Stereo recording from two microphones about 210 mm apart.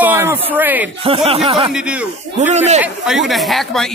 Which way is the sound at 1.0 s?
25° right (ahead or behind).